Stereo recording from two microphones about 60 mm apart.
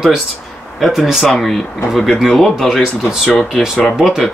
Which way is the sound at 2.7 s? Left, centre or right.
Centre.